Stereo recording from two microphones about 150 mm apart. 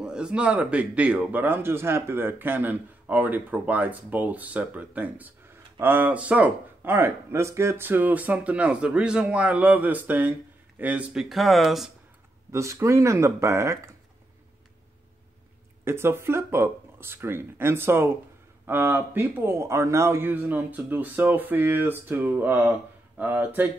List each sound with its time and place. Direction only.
0.0 s a man's voice: 5° right (ahead or behind)
12.4 s speech: 20° right (ahead or behind)
15.8 s a man's voice: 15° right (ahead or behind)